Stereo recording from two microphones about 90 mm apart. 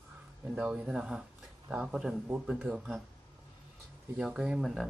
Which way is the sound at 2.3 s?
15° right (ahead or behind).